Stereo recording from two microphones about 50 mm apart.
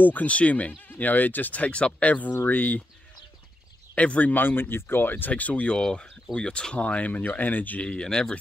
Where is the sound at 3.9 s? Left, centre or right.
Left.